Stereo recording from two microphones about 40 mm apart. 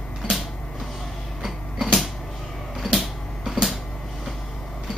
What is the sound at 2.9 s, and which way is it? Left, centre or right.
Music, centre.